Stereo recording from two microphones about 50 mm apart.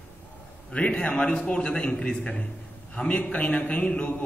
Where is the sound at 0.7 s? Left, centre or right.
Left.